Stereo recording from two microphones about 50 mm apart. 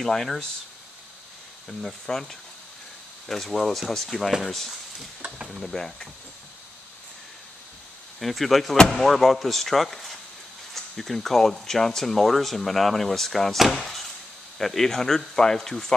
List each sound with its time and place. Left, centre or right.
0.0 s speech: centre
1.7 s speech: centre
8.2 s speech: centre